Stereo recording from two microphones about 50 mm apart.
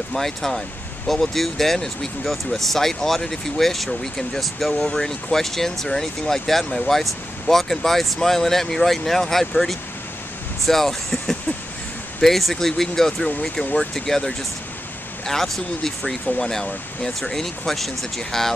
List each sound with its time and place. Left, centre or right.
0.1 s speech: centre